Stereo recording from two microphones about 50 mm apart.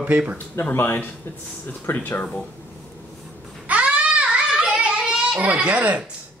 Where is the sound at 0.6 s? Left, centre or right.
Left.